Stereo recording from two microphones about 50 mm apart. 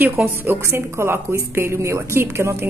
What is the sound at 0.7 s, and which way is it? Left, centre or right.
Speech, right.